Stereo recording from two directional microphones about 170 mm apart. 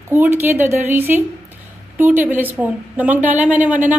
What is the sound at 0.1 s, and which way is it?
A woman's voice, 10° right (ahead or behind).